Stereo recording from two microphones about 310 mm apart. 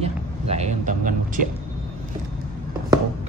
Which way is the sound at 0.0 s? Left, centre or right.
Right.